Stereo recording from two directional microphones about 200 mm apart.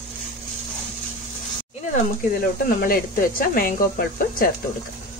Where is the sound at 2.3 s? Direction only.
45° left (ahead or behind).